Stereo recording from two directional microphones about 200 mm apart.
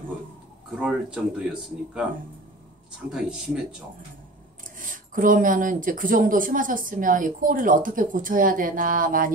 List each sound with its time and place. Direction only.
0.7 s speech: 5° right (ahead or behind)
3.1 s speech: 5° right (ahead or behind)
4.7 s speech: 40° right (ahead or behind)